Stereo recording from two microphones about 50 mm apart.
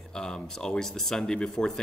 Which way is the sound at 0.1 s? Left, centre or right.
Centre.